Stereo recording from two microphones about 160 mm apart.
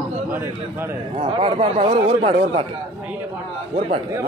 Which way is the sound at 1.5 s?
45° right (ahead or behind).